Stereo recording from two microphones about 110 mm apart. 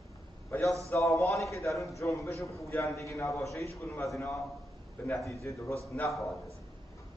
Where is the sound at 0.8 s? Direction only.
25° left (ahead or behind).